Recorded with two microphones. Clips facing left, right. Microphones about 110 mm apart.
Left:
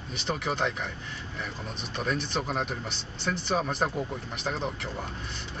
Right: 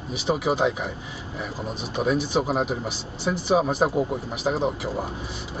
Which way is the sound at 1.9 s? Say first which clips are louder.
Right 8 dB; 5° right (ahead or behind).